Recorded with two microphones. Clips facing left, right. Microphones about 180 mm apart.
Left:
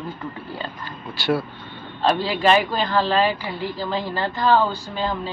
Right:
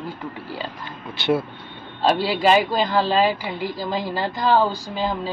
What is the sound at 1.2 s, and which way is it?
A woman's voice, 20° right (ahead or behind).